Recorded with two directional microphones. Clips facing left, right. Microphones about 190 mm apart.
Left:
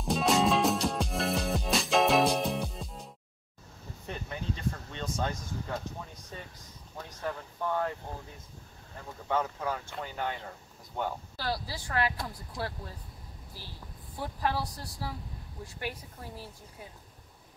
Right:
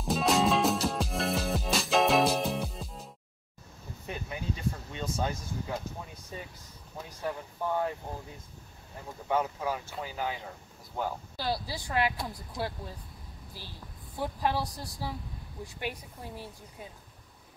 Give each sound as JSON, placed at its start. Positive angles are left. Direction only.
{"t": 0.0, "sound": "music", "side_deg": 0}
{"t": 4.1, "sound": "a sound", "side_deg": -10}
{"t": 6.3, "sound": "speech", "side_deg": -10}
{"t": 9.3, "sound": "speech", "side_deg": -10}
{"t": 11.3, "sound": "speech", "side_deg": -15}
{"t": 14.2, "sound": "speech", "side_deg": -15}